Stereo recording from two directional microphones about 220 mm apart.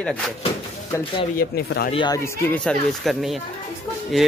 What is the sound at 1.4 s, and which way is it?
Speech, 45° left (ahead or behind).